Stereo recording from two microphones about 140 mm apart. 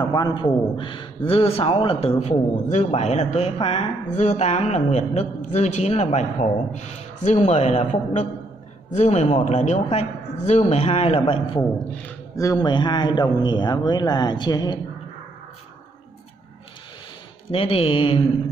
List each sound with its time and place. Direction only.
0.0 s a man's voice: 30° left (ahead or behind)
4.2 s a man's voice: 55° left (ahead or behind); by 11.6 s 40° left (ahead or behind)
12.4 s a man's voice: 25° left (ahead or behind)
17.5 s a man's voice: 40° left (ahead or behind)